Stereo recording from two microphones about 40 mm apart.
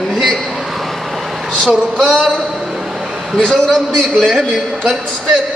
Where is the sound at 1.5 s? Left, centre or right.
Centre.